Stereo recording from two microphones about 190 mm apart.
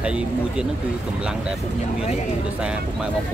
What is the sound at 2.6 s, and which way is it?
Speech, 5° right (ahead or behind).